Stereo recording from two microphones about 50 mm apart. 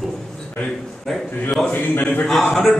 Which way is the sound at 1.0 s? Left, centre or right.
Centre.